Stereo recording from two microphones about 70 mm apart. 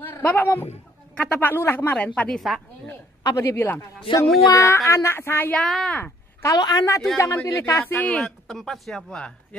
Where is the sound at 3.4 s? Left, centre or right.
Left.